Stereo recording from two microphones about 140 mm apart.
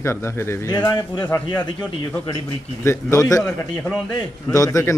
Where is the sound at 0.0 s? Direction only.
20° left (ahead or behind).